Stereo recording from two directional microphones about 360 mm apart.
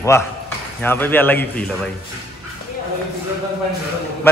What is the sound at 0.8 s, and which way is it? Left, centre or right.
Speech, centre.